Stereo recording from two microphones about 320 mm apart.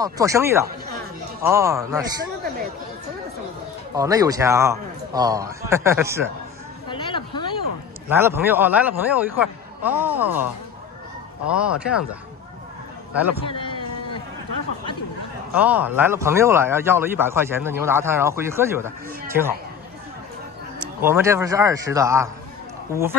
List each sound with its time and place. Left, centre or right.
0.0 s a man's voice: centre
3.9 s a man's voice: centre
6.9 s a sound: centre
8.1 s a man's voice: centre
13.1 s a man's voice: centre
13.5 s a sound: centre
15.5 s a man's voice: centre
20.8 s a man's voice: centre